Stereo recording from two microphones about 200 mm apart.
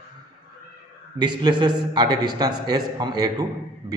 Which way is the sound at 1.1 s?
20° right (ahead or behind).